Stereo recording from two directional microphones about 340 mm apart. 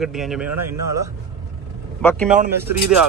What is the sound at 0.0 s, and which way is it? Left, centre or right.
Speech, centre.